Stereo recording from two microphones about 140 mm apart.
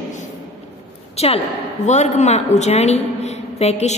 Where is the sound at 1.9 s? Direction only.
55° left (ahead or behind).